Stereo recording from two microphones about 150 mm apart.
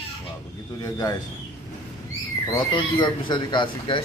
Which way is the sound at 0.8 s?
25° left (ahead or behind).